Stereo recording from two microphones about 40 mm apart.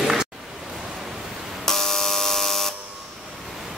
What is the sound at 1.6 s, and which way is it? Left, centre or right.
Buzzer, centre.